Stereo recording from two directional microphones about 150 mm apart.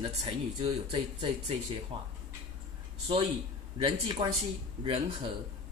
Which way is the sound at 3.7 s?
35° right (ahead or behind).